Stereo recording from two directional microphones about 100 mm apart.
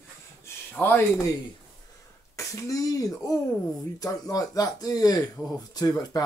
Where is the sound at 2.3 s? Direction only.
30° left (ahead or behind).